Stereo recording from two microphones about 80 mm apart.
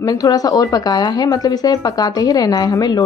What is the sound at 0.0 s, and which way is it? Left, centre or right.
Speech, left.